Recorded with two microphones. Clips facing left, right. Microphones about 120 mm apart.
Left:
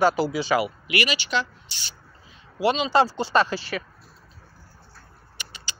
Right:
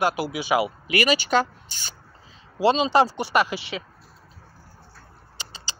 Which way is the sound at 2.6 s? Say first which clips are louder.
Right 3 dB; 30° right (ahead or behind).